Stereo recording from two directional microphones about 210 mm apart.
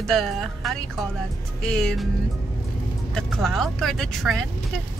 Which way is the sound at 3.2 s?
Centre (ahead or behind).